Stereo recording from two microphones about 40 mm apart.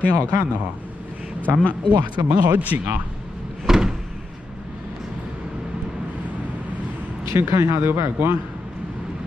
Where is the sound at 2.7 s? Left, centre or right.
Right.